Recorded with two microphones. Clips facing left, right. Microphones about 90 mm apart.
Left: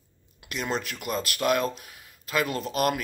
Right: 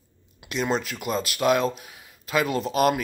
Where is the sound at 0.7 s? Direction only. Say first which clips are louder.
Right 2 dB; centre (ahead or behind).